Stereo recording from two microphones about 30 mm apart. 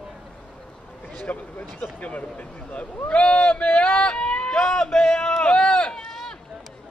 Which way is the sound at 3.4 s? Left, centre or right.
Left.